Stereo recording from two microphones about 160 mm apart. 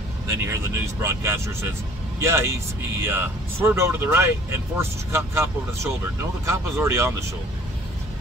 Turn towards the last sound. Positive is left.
turn(degrees=-20)  # may be behind; listen again after turning